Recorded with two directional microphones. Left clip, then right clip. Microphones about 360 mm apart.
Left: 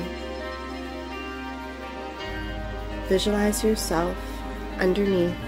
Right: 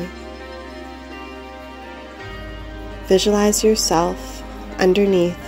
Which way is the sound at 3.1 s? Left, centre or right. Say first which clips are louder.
Right 8 dB; centre.